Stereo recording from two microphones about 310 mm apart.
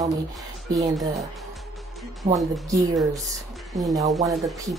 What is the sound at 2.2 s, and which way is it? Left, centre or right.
Speech, centre.